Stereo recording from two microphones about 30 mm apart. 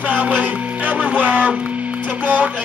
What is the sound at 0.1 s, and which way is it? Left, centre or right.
Music, right.